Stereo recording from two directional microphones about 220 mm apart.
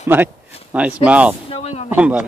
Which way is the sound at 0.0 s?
10° right (ahead or behind).